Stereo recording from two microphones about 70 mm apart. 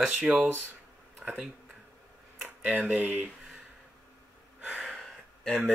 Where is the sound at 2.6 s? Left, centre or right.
Centre.